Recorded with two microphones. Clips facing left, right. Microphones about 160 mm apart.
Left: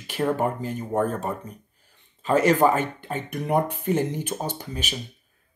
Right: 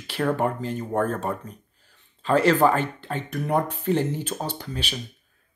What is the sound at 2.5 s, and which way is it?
Speech, 10° left (ahead or behind).